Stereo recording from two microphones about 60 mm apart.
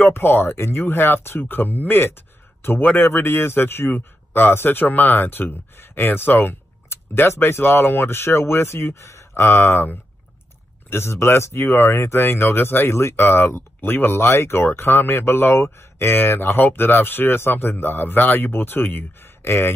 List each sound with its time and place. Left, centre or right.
0.0 s speech: left
1.4 s speech: left